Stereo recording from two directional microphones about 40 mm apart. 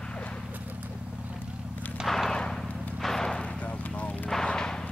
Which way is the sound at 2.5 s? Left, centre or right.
Centre.